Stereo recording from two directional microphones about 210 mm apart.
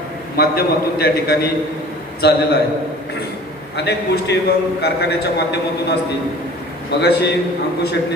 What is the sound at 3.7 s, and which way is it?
A man's voice, 50° left (ahead or behind).